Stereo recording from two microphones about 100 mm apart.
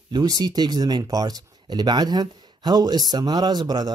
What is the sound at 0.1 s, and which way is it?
A man's voice, 40° right (ahead or behind).